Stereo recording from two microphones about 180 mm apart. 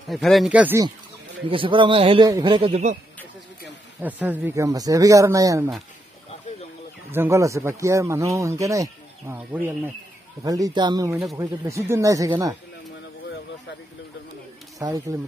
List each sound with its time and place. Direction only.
0.1 s speech: centre (ahead or behind)
1.5 s a man's voice: 30° right (ahead or behind)
4.0 s a man's voice: 10° right (ahead or behind)
7.1 s a man's voice: 15° right (ahead or behind)
14.8 s a man's voice: 20° right (ahead or behind)